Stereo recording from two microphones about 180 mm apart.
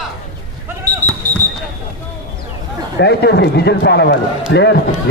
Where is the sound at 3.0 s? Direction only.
65° left (ahead or behind).